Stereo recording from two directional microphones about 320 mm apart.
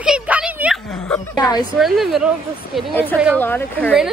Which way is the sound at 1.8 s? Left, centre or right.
Centre.